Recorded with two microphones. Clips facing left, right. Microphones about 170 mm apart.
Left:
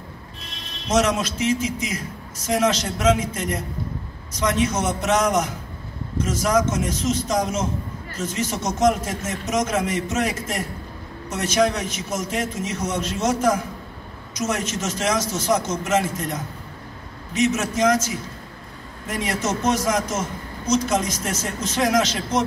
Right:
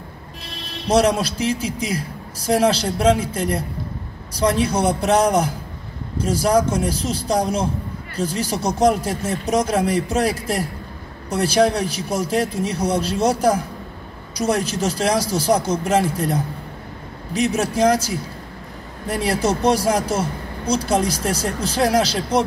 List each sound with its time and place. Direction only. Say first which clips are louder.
0.7 s a man's voice: right 4 dB; 35° right (ahead or behind)